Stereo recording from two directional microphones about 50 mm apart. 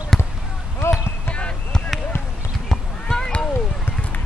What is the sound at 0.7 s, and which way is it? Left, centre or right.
Basketball bounce, left.